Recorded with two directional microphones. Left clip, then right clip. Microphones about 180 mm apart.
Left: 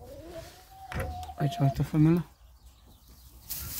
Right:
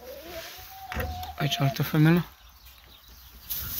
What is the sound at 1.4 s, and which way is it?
Speech, 35° left (ahead or behind).